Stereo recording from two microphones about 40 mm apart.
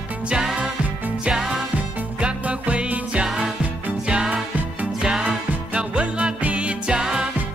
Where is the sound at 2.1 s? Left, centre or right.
Right.